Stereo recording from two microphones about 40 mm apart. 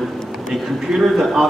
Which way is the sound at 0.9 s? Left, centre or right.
Centre.